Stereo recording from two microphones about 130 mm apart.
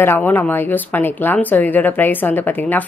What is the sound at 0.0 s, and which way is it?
A woman's voice, 15° left (ahead or behind).